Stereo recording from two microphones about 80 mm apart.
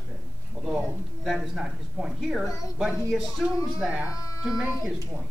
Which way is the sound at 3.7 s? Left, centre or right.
Centre.